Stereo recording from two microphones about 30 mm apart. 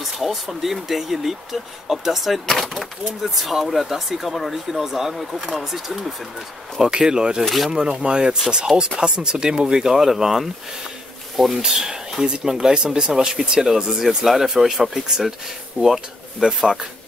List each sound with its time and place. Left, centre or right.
0.0 s speech: centre
2.4 s speech: centre
2.8 s speech: centre
5.1 s speech: centre
6.8 s speech: right; by 11.6 s centre
11.7 s speech: centre
14.0 s speech: centre